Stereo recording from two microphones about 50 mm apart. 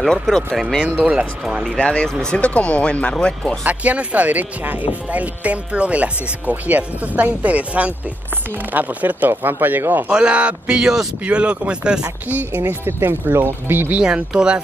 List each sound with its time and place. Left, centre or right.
0.8 s speech: right
1.6 s speech: centre
3.6 s speech: right
10.0 s speech: right
12.3 s speech: right
12.8 s speech: right
13.9 s speech: right